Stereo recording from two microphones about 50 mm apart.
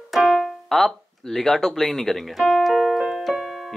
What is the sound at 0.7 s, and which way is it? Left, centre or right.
Music, centre.